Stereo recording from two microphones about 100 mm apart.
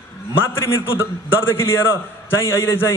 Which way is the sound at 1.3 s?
25° left (ahead or behind).